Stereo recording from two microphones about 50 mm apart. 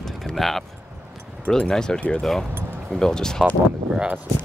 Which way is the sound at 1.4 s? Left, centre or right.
Centre.